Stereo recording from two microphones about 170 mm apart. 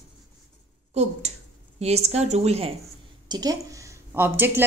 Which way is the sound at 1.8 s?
40° right (ahead or behind).